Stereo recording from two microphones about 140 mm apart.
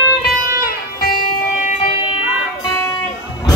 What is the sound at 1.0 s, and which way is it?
Music, 90° left.